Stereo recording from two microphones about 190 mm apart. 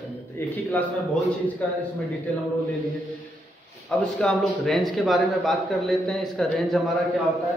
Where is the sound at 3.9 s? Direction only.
Centre (ahead or behind).